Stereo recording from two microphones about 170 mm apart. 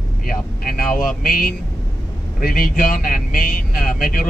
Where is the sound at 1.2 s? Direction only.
60° left (ahead or behind).